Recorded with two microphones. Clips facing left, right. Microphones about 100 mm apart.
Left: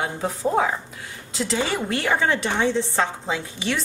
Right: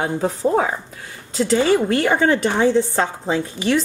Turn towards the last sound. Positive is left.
turn(degrees=-45)  # may be behind; listen again after turning